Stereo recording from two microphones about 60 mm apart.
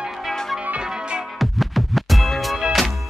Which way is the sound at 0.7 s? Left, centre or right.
Centre.